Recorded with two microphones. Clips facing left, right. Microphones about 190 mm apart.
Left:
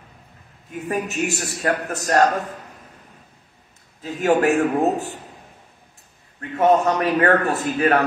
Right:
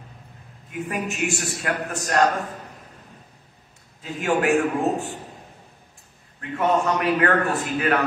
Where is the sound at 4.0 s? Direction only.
40° left (ahead or behind).